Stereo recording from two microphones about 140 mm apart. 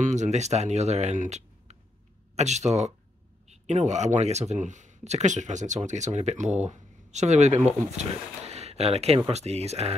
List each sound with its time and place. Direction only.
0.0 s speech: 55° right (ahead or behind)